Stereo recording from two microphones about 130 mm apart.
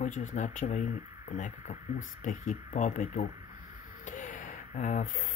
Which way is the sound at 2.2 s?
90° left.